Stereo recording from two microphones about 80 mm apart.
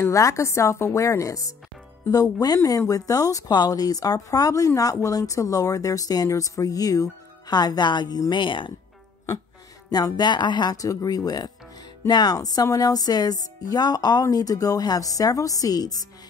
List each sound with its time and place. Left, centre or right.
0.0 s a woman's voice: left
8.3 s speech: left
9.8 s speech: left